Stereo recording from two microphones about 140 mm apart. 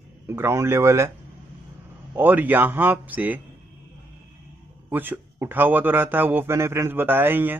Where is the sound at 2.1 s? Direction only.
15° right (ahead or behind).